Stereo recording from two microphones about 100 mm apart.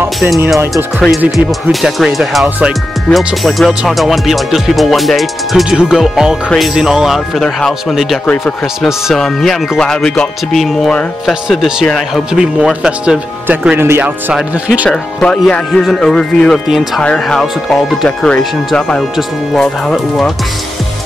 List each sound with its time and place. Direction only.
0.9 s speech: 5° right (ahead or behind)
13.5 s speech: 20° right (ahead or behind)
14.0 s speech: 10° right (ahead or behind)
14.9 s speech: 10° left (ahead or behind)
16.6 s speech: 5° right (ahead or behind)
17.0 s speech: 10° left (ahead or behind)